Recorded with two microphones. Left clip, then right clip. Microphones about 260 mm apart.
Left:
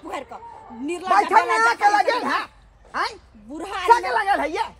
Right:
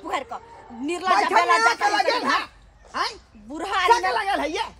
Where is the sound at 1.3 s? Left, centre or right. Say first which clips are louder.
Left 1 dB; centre.